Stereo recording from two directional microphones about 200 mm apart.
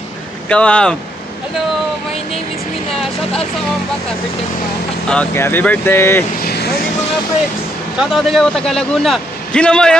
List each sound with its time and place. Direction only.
0.5 s a man's voice: 5° left (ahead or behind)
5.1 s speech: 10° left (ahead or behind)
6.4 s speech: 55° left (ahead or behind)
8.0 s a man's voice: centre (ahead or behind)